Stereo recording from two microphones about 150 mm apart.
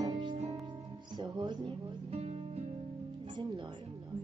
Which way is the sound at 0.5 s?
25° right (ahead or behind).